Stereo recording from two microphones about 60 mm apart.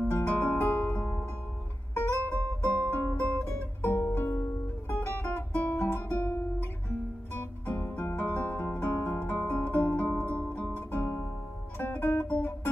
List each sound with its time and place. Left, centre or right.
0.2 s guitar: left
0.5 s music: left
5.8 s guitar: left
7.3 s music: left
11.0 s music: left